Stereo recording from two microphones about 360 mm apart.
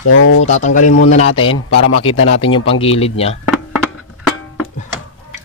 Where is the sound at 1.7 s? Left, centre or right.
Left.